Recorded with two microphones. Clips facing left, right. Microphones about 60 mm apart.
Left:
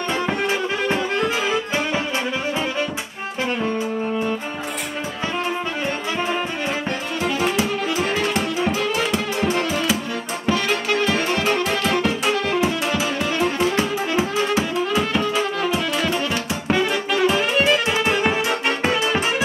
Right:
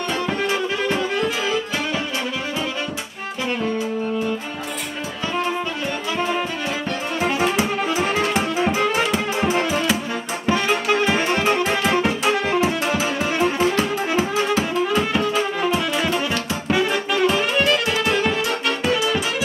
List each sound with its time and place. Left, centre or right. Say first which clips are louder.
0.3 s music: even; left
1.1 s accordion: left 1 dB; left
6.1 s music: right 2 dB; centre
7.2 s music: right 1 dB; centre
13.7 s music: even; centre
17.8 s music: left 1 dB; centre
18.9 s music: even; left